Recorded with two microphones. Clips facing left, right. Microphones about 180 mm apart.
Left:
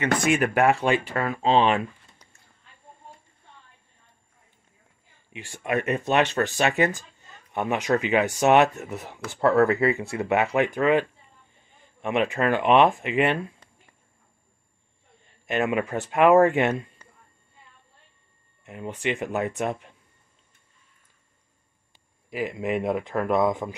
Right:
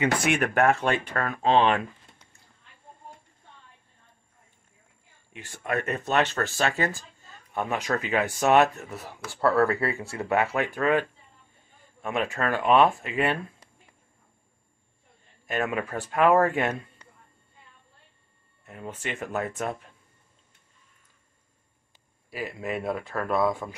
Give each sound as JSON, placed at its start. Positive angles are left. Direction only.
{"t": 0.2, "sound": "speech", "side_deg": 5}
{"t": 5.3, "sound": "speech", "side_deg": 10}
{"t": 15.4, "sound": "speech", "side_deg": 25}
{"t": 18.7, "sound": "speech", "side_deg": 15}
{"t": 22.3, "sound": "speech", "side_deg": 15}